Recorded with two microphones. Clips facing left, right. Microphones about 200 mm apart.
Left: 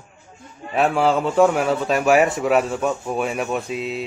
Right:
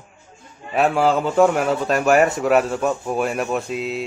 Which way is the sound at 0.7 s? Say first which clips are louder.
Right 1 dB; centre (ahead or behind).